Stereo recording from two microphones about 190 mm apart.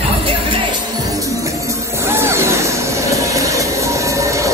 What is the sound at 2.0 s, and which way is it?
Vehicle, 15° right (ahead or behind).